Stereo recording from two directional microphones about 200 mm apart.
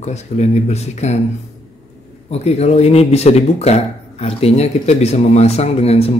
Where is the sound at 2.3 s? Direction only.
30° left (ahead or behind).